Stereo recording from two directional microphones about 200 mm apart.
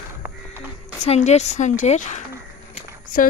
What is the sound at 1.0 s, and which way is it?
Speech, 35° left (ahead or behind).